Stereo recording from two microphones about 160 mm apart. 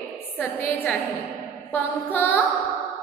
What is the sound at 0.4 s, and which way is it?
A woman's voice, 10° left (ahead or behind).